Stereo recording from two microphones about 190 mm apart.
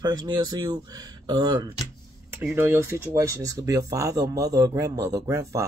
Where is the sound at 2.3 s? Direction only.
10° right (ahead or behind).